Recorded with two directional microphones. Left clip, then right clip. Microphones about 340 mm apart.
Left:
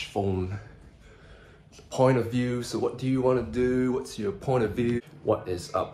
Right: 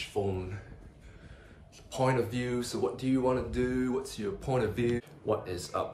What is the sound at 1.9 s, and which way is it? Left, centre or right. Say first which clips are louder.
Speech: left 6 dB; centre.